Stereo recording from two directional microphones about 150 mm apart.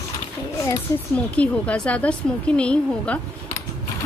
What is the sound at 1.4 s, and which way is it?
A woman's voice, 10° left (ahead or behind).